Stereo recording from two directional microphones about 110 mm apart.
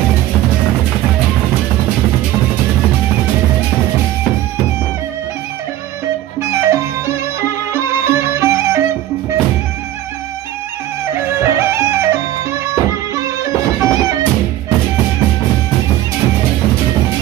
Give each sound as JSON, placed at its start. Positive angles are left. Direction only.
{"t": 6.4, "sound": "music", "side_deg": -25}
{"t": 11.1, "sound": "music", "side_deg": -25}